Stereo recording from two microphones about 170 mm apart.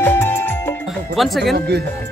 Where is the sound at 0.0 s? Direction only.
10° left (ahead or behind).